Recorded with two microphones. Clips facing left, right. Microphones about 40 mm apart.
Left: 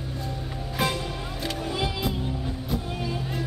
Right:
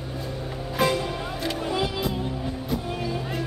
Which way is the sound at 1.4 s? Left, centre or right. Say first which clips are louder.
Right 3 dB; centre.